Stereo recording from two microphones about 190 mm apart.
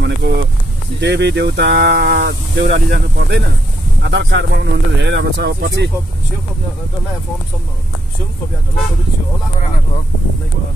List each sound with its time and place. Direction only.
0.0 s vehicle: 60° right (ahead or behind)
1.0 s speech: 65° right (ahead or behind)